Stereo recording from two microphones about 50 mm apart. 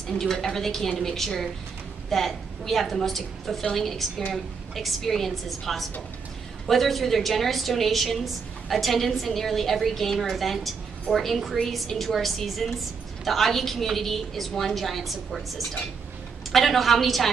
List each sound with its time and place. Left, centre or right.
0.2 s a woman's voice: centre
11.5 s a woman's voice: centre